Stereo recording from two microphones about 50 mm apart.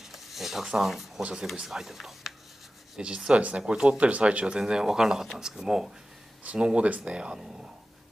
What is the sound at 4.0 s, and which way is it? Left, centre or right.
Speech, right.